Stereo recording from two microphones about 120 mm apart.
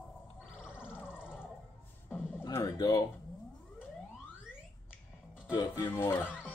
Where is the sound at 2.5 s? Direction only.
30° left (ahead or behind).